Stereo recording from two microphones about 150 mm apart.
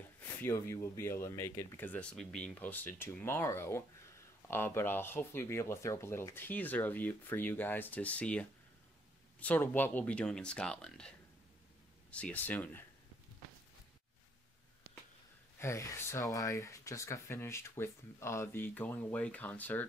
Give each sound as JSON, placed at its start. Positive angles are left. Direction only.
{"t": 0.4, "sound": "speech", "side_deg": 20}
{"t": 15.6, "sound": "speech", "side_deg": 20}